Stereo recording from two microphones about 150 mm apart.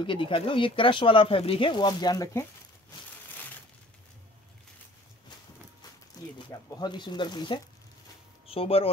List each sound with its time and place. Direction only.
0.0 s speech: 35° left (ahead or behind)
6.3 s speech: 30° left (ahead or behind)